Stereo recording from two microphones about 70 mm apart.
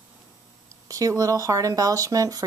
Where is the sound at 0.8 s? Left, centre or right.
Right.